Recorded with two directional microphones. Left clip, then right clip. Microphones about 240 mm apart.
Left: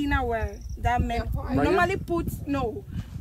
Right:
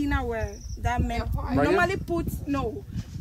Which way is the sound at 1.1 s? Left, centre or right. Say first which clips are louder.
Even; right.